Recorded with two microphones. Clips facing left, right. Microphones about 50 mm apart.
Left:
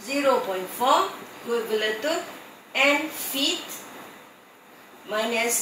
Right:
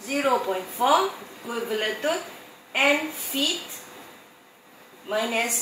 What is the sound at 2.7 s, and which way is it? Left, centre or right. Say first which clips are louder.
A woman's voice: even; centre.